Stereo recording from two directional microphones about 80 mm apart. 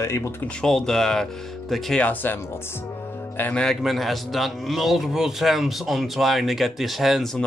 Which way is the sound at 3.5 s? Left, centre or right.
Centre.